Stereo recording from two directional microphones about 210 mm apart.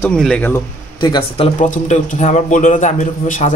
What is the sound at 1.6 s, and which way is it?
A man's voice, 35° left (ahead or behind).